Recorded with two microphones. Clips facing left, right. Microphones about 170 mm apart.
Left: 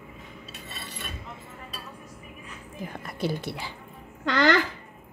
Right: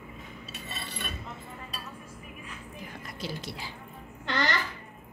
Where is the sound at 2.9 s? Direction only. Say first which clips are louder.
Left 9 dB; 55° left (ahead or behind).